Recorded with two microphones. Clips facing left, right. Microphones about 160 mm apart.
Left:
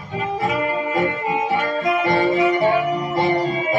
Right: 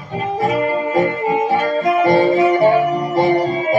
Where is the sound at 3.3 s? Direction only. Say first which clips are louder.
Right 4 dB; 35° right (ahead or behind).